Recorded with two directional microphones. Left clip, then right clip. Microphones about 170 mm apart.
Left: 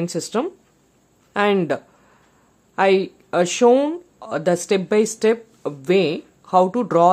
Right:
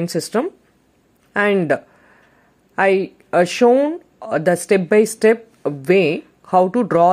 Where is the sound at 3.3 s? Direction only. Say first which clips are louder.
Right 2 dB; 5° right (ahead or behind).